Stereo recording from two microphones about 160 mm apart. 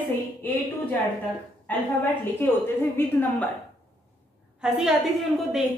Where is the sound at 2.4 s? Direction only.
10° left (ahead or behind).